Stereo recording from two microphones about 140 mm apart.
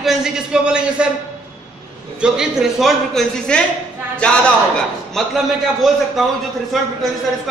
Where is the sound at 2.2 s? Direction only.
5° right (ahead or behind).